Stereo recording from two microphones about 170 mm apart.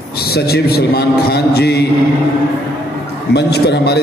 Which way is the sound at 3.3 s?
75° left (ahead or behind).